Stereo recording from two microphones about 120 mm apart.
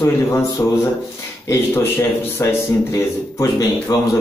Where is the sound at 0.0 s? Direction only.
25° left (ahead or behind).